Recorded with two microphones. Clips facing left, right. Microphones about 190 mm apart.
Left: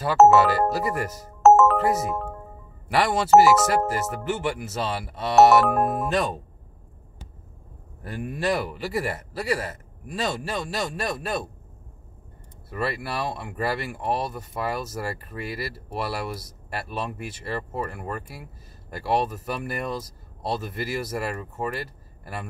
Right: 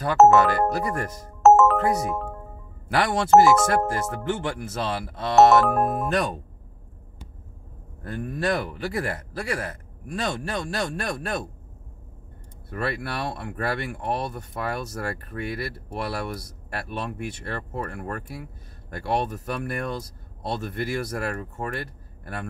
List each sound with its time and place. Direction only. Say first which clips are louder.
0.0 s speech: even; 5° left (ahead or behind)
8.2 s speech: even; 10° left (ahead or behind)
12.6 s speech: even; centre (ahead or behind)